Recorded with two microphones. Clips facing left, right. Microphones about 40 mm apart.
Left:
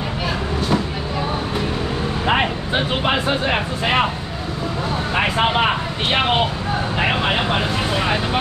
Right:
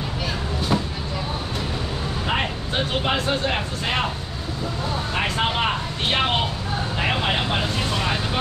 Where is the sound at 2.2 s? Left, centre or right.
Left.